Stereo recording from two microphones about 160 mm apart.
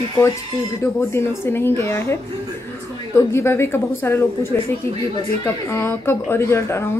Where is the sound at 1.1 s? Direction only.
15° left (ahead or behind).